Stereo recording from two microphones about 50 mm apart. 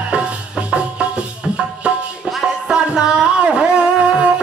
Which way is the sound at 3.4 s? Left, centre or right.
Centre.